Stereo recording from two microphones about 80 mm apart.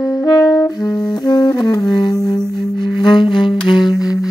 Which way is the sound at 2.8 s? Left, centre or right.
Left.